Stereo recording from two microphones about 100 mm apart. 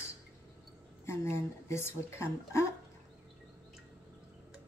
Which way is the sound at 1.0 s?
30° left (ahead or behind).